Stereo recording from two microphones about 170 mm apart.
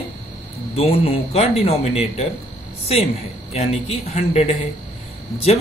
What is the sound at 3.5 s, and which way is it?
Speech, 35° left (ahead or behind).